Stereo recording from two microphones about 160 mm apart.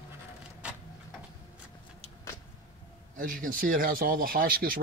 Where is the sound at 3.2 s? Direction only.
60° right (ahead or behind).